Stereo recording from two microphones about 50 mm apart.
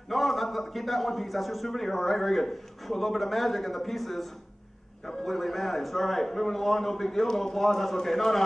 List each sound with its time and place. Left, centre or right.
0.1 s a man's voice: centre